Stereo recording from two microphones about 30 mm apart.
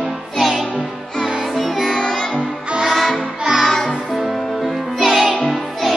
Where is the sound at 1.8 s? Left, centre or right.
Left.